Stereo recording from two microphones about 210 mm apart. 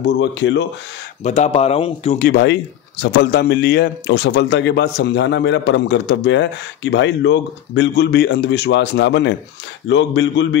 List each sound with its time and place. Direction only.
0.0 s a man's voice: 60° left (ahead or behind)
1.2 s speech: 35° left (ahead or behind)
2.1 s a man's voice: 45° left (ahead or behind)